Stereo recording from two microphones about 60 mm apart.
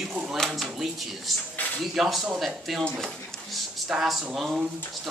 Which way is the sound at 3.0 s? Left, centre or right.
Centre.